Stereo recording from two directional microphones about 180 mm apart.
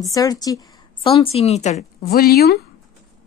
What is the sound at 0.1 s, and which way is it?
Speech, 20° left (ahead or behind).